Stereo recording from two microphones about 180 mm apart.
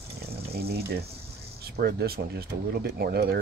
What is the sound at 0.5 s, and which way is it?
Speech, 60° right (ahead or behind).